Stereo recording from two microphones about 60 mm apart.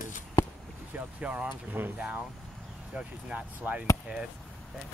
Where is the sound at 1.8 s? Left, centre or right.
Right.